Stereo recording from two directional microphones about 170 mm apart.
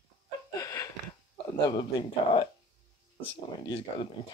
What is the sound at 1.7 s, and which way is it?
Speech, 30° left (ahead or behind).